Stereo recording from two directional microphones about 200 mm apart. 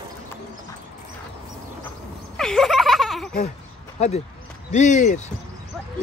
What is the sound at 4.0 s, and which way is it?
Speech, 35° left (ahead or behind).